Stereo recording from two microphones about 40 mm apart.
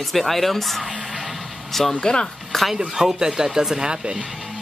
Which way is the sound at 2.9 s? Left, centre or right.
Centre.